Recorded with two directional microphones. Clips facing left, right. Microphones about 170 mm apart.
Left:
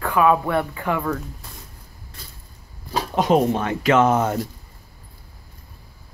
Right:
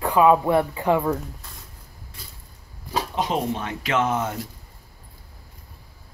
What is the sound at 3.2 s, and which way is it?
Speech, 50° left (ahead or behind).